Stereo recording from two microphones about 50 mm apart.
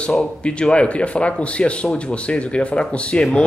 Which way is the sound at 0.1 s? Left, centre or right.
Left.